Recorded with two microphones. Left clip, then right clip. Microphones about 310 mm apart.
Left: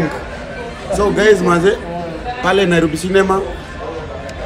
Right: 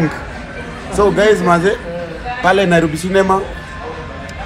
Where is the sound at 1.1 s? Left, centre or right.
Centre.